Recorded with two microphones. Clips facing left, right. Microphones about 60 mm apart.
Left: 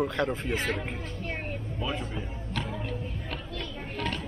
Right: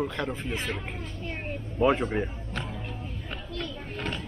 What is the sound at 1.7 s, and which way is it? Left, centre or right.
Speech, right.